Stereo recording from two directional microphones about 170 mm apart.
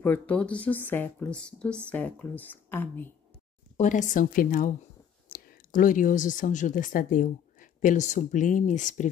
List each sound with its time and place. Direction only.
0.0 s speech: 10° left (ahead or behind)
3.7 s a woman's voice: 45° left (ahead or behind)